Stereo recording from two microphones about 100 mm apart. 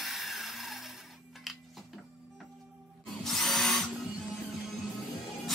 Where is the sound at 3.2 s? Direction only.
5° left (ahead or behind).